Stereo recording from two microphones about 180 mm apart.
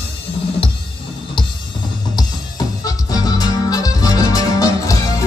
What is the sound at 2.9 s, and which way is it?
Music, 20° left (ahead or behind).